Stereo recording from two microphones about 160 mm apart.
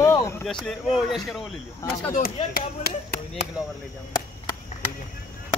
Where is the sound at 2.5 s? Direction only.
70° left (ahead or behind).